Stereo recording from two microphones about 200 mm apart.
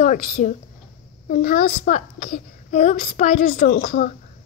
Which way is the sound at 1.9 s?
35° left (ahead or behind).